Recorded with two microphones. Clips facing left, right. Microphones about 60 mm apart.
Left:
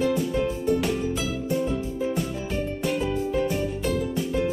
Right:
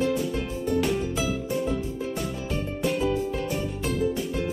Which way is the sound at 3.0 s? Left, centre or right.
Centre.